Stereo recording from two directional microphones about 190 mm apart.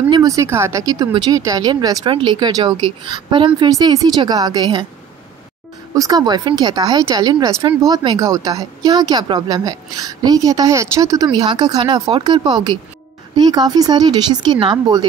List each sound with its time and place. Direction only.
0.1 s speech: 20° right (ahead or behind)
5.9 s speech: 20° right (ahead or behind)